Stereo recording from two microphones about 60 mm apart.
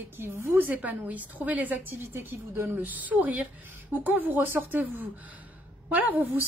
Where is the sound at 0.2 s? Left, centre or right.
Right.